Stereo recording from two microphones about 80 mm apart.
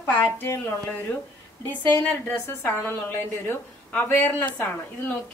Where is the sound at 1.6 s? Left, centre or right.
Left.